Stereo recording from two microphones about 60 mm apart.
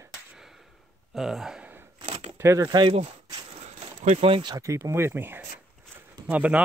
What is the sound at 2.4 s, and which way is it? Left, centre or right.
Speech, right.